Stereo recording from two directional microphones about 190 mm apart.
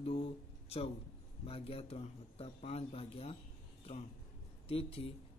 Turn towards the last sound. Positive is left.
turn(degrees=30)  # may be behind; listen again after turning